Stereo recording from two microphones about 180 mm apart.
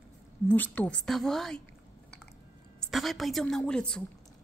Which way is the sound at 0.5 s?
10° left (ahead or behind).